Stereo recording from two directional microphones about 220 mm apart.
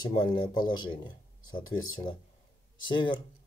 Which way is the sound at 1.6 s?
65° left (ahead or behind).